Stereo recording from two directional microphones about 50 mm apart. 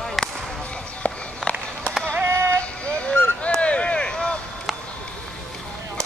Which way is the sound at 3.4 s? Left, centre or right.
Left.